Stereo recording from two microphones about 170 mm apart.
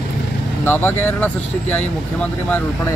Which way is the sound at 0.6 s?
10° left (ahead or behind).